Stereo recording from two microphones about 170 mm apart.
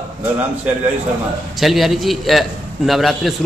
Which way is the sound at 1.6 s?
Centre (ahead or behind).